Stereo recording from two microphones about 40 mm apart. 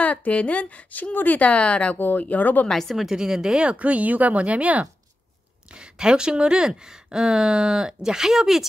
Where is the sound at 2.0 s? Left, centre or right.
Left.